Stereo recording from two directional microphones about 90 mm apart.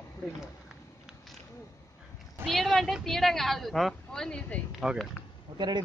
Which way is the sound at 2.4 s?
Centre (ahead or behind).